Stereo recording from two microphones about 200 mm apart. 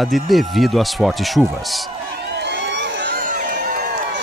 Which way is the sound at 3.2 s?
45° right (ahead or behind).